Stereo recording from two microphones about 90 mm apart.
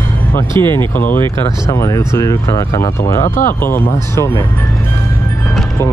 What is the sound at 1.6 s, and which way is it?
Speech, 40° left (ahead or behind).